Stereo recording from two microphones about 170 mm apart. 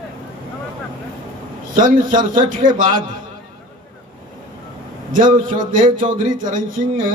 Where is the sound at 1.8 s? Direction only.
50° right (ahead or behind).